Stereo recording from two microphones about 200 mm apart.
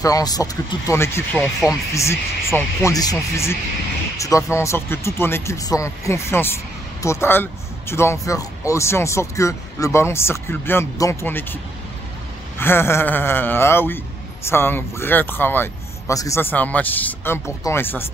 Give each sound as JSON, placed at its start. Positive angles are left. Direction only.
{"t": 0.0, "sound": "a man's voice", "side_deg": 20}
{"t": 12.5, "sound": "a man's voice", "side_deg": 10}